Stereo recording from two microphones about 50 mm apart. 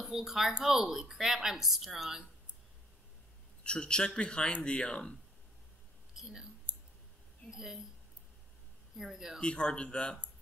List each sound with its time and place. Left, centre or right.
0.0 s speech: centre
3.6 s a man's voice: centre
6.1 s speech: centre
8.9 s speech: centre
9.4 s a man's voice: centre